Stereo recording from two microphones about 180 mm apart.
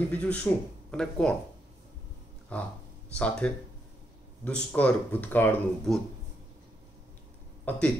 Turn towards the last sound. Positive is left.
turn(degrees=10)  # may be behind; listen again after turning